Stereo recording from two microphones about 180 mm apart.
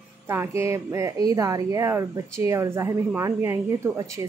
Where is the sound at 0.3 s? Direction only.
15° right (ahead or behind).